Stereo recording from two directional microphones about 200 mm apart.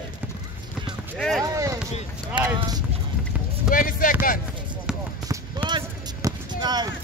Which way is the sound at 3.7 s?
45° left (ahead or behind).